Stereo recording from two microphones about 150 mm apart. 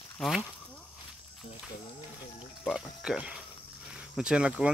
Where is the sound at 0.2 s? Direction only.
Centre (ahead or behind).